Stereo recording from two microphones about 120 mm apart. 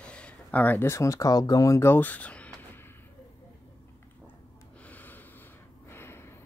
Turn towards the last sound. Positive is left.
turn(degrees=20)  # may be behind; listen again after turning